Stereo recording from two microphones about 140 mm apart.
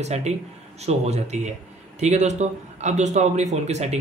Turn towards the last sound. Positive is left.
turn(degrees=-50)  # may be behind; listen again after turning